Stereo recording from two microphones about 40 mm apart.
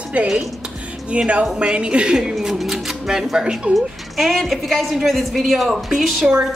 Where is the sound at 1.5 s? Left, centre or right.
Right.